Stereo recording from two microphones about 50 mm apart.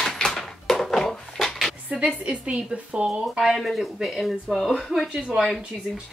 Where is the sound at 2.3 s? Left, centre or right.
Right.